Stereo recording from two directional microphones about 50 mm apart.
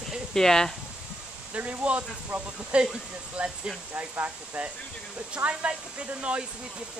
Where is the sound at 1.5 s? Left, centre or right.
Right.